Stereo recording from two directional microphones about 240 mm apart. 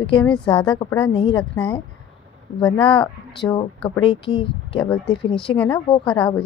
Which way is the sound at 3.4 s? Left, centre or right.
Centre.